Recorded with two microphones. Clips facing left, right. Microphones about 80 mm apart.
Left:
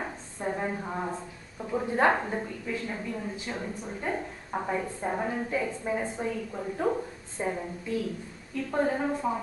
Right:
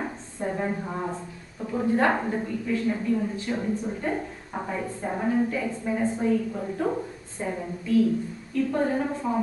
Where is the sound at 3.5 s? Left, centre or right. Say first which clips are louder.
Right 7 dB; centre.